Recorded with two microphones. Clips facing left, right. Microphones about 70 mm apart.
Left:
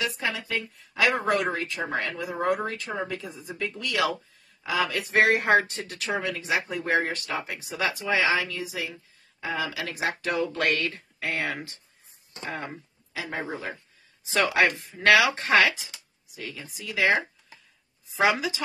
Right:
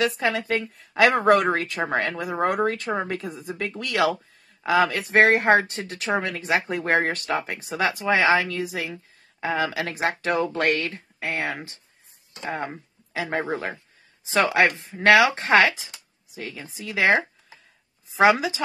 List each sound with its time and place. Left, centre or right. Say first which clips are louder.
0.0 s speech: right 6 dB; right
6.2 s speech: right 3 dB; right
10.9 s speech: right 2 dB; right